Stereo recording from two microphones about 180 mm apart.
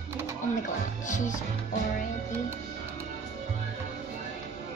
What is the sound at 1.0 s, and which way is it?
Music, 45° left (ahead or behind).